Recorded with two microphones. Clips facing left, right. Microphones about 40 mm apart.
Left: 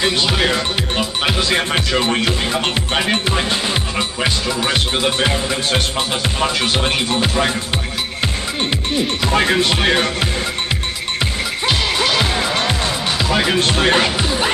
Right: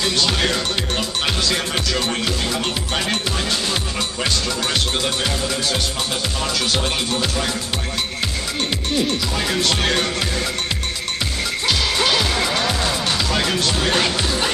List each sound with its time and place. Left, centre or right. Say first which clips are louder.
0.3 s speech: left 3 dB; centre
4.2 s music: left 2 dB; left
9.2 s music: left 7 dB; left
9.6 s speech: left 4 dB; left
13.2 s speech: left 7 dB; centre
13.6 s music: left 5 dB; left
13.9 s music: left 3 dB; centre